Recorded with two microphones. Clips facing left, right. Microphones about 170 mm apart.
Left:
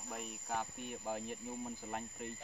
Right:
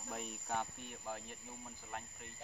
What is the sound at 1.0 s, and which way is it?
Speech, 25° left (ahead or behind).